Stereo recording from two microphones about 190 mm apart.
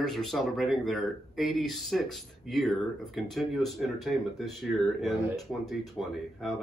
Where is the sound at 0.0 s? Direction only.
Centre (ahead or behind).